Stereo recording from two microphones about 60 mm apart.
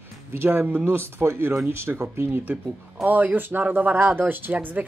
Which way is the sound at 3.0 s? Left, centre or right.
Right.